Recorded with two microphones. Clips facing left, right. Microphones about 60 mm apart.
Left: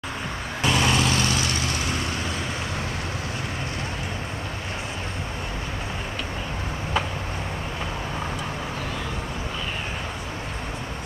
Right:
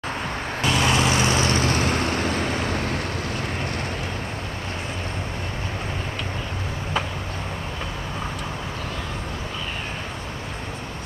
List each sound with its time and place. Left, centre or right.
0.7 s vehicle: centre
0.9 s vehicle: centre
1.2 s vehicle: right